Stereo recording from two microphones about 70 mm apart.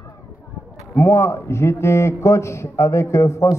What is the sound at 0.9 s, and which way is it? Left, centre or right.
A man's voice, left.